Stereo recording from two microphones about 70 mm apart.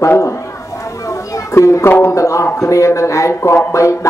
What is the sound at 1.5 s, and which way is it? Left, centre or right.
Speech, left.